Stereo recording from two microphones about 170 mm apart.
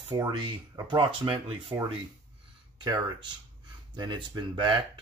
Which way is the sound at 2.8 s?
25° right (ahead or behind).